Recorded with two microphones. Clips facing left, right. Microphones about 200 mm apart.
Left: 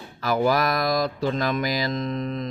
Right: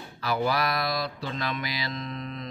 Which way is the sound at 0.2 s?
45° left (ahead or behind).